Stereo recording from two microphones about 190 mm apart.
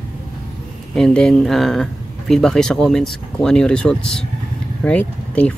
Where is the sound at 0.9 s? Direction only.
5° left (ahead or behind).